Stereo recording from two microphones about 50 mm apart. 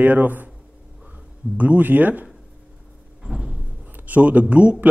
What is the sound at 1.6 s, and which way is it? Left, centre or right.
Speech, right.